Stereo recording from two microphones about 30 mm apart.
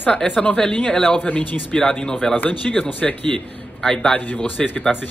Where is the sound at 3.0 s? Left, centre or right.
Left.